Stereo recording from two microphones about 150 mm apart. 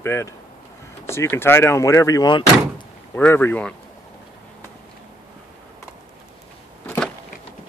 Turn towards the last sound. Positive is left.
turn(degrees=10)  # may be behind; listen again after turning